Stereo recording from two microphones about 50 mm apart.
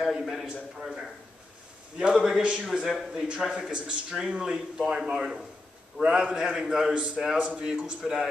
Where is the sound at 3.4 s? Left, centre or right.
Centre.